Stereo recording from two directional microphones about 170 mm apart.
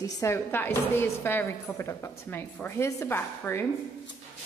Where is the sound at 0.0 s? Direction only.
15° left (ahead or behind).